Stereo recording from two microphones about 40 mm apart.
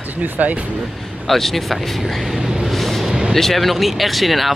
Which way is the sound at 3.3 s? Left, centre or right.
Centre.